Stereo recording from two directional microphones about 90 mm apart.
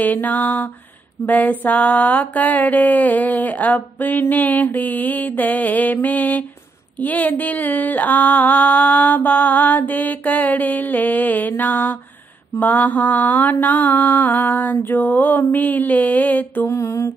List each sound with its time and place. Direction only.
0.0 s mantra: 20° left (ahead or behind)
16.7 s mantra: 30° left (ahead or behind)